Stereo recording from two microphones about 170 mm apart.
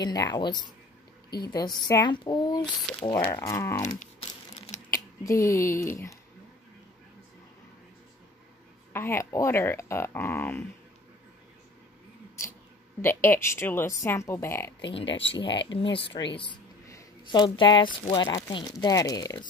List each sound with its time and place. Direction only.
0.0 s speech: 25° left (ahead or behind)
2.6 s speech: 5° left (ahead or behind)
3.1 s speech: 20° left (ahead or behind)
4.9 s speech: 20° left (ahead or behind)
8.9 s speech: 15° left (ahead or behind)
13.0 s speech: 15° left (ahead or behind)
15.0 s speech: 90° left
15.3 s speech: 25° left (ahead or behind)
15.6 s speech: 90° left
16.3 s speech: 25° left (ahead or behind)